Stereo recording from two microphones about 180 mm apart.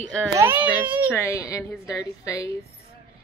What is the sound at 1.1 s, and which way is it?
A woman's voice, 15° left (ahead or behind).